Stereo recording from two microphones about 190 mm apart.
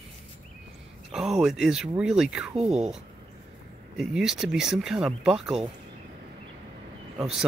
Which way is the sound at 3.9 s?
Centre (ahead or behind).